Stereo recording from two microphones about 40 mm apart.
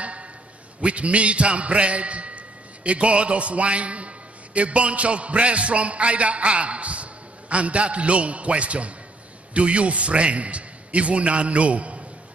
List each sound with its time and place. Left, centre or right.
0.7 s a man's voice: right